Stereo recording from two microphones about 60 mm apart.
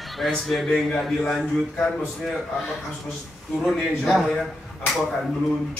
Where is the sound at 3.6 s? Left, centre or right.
Centre.